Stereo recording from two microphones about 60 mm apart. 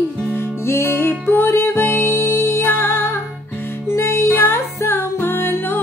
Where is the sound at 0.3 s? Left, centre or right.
Left.